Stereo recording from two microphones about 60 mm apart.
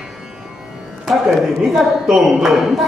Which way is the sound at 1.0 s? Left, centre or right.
Centre.